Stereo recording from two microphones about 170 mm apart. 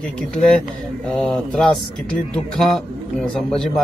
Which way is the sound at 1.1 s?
5° left (ahead or behind).